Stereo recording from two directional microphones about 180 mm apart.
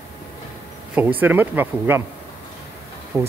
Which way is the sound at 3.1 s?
15° right (ahead or behind).